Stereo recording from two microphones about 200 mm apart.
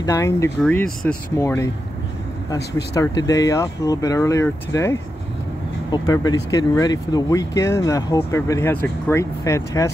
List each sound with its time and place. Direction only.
0.0 s speech: 15° left (ahead or behind)
0.6 s speech: 5° left (ahead or behind)